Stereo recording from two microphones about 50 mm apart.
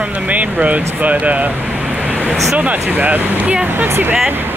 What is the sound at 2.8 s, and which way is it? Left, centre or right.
Speech, right.